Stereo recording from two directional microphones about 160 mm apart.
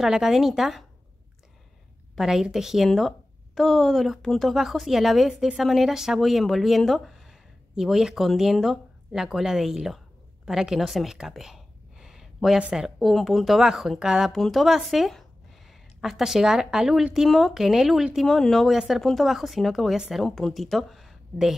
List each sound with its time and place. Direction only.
0.0 s speech: 5° right (ahead or behind)
2.1 s a woman's voice: 5° right (ahead or behind)